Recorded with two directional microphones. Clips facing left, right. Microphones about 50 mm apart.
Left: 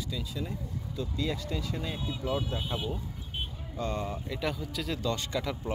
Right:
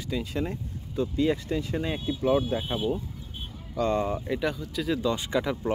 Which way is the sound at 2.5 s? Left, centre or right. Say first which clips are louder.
Right 6 dB; right.